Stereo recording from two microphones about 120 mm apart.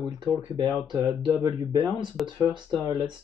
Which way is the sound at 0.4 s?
40° right (ahead or behind).